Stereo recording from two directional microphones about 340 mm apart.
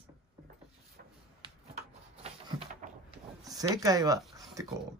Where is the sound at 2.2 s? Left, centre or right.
Centre.